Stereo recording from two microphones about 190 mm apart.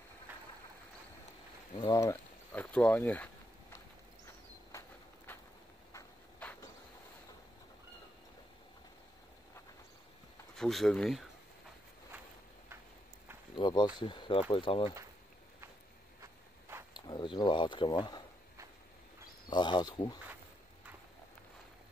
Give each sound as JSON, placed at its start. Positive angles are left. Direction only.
{"t": 1.8, "sound": "speech", "side_deg": 20}
{"t": 4.7, "sound": "walk", "side_deg": 10}
{"t": 5.9, "sound": "a sound", "side_deg": 15}
{"t": 10.5, "sound": "speech", "side_deg": 0}
{"t": 13.6, "sound": "speech", "side_deg": 25}
{"t": 16.2, "sound": "insect", "side_deg": -15}
{"t": 16.9, "sound": "speech", "side_deg": 25}
{"t": 19.5, "sound": "speech", "side_deg": 25}